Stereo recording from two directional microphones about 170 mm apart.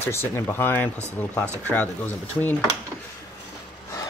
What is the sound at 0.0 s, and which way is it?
Speech, 15° left (ahead or behind).